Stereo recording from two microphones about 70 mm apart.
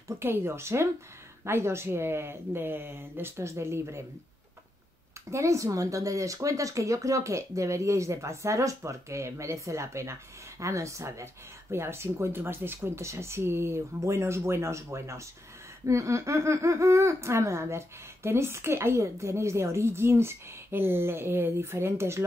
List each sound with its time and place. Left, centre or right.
0.2 s speech: right
5.3 s speech: right